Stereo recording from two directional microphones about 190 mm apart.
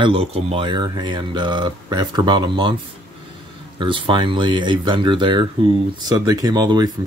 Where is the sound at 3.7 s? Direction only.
25° right (ahead or behind).